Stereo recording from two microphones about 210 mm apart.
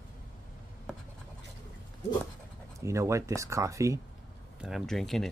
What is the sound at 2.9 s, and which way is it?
Speech, 15° right (ahead or behind).